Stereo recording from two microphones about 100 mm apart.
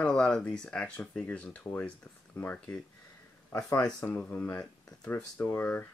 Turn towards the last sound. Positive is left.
turn(degrees=20)  # may be behind; listen again after turning